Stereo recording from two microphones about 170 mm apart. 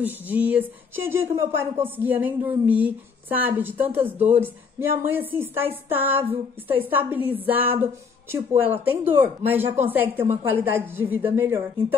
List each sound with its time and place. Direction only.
0.0 s a woman's voice: 10° right (ahead or behind)